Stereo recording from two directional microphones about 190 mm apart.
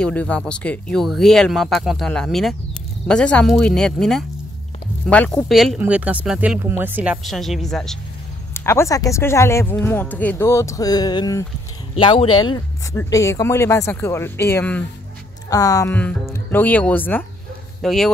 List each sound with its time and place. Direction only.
0.0 s speech: 5° left (ahead or behind); by 7.2 s 10° right (ahead or behind)
7.2 s speech: centre (ahead or behind)
8.5 s speech: 15° left (ahead or behind)